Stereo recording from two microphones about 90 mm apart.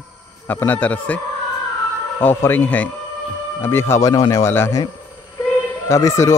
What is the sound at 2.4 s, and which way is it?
Speech, 20° left (ahead or behind).